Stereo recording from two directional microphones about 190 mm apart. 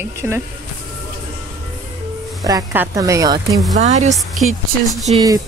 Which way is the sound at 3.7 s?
35° right (ahead or behind).